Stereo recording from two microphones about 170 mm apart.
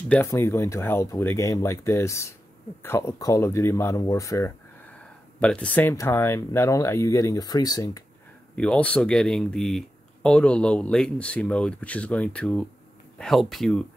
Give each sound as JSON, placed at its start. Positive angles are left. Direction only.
{"t": 0.1, "sound": "speech", "side_deg": 15}
{"t": 8.5, "sound": "speech", "side_deg": 5}